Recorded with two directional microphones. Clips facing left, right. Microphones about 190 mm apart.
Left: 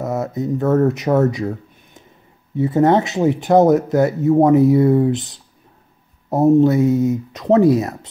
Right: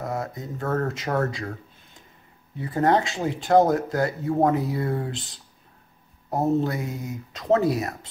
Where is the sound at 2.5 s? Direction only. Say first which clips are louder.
Left 7 dB; 20° left (ahead or behind).